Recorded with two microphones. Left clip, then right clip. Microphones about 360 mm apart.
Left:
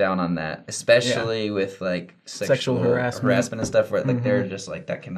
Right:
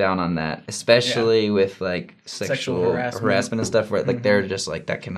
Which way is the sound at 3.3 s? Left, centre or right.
Right.